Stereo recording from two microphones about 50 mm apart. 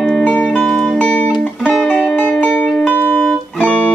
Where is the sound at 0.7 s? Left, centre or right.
Centre.